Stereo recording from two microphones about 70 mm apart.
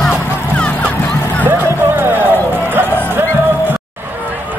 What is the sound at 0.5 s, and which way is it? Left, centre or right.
Music, centre.